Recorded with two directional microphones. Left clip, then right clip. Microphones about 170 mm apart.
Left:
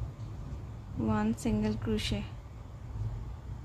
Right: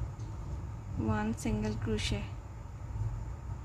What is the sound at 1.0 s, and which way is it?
A woman's voice, 20° left (ahead or behind).